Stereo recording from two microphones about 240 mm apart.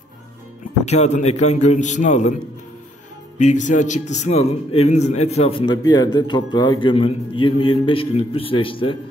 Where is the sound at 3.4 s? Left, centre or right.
Left.